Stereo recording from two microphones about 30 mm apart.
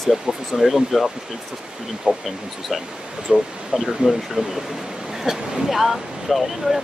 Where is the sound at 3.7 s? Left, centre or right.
Right.